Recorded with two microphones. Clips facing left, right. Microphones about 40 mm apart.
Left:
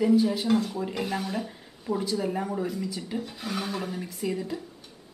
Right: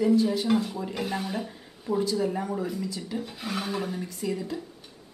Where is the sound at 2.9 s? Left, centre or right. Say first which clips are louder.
Even; centre.